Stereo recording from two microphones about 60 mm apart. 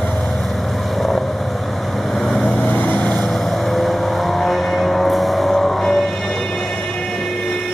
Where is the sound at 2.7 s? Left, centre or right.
Left.